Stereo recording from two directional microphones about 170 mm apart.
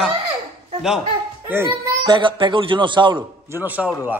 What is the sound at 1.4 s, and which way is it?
Speech, 15° right (ahead or behind).